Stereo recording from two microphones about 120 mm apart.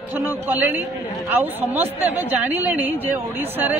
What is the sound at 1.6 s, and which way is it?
Speech, 60° right (ahead or behind).